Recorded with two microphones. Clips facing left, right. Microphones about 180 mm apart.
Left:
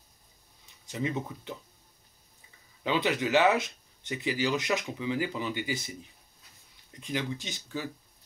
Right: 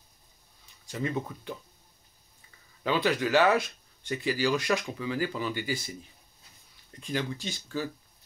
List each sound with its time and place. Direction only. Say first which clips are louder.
0.8 s speech: right 1 dB; 20° left (ahead or behind)
2.8 s speech: right 1 dB; 20° left (ahead or behind)
7.0 s speech: right 1 dB; 20° left (ahead or behind)